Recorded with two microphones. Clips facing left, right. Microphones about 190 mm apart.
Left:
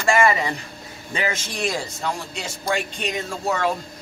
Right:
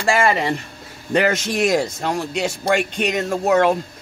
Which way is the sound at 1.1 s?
70° right (ahead or behind).